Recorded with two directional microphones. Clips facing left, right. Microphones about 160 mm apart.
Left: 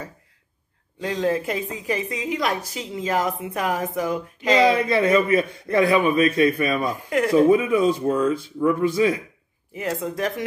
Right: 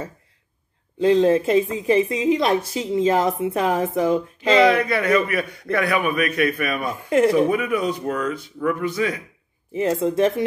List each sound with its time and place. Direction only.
0.9 s a woman's voice: 25° right (ahead or behind)
4.6 s a man's voice: 25° left (ahead or behind)
6.9 s a woman's voice: 25° right (ahead or behind)
7.3 s a man's voice: 25° left (ahead or behind)
9.8 s a woman's voice: 25° right (ahead or behind)